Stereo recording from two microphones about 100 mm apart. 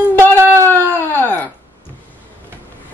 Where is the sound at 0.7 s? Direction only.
20° left (ahead or behind).